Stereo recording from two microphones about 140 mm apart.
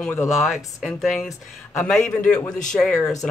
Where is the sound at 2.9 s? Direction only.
20° left (ahead or behind).